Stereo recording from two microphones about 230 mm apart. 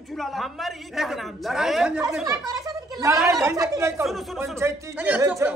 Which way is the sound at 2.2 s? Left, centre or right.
Centre.